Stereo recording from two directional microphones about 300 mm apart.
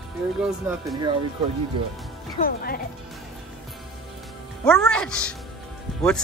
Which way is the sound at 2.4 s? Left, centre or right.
Left.